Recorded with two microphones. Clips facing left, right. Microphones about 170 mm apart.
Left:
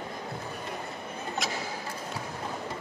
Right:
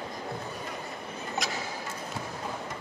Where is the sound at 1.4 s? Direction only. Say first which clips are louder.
Left 1 dB; centre (ahead or behind).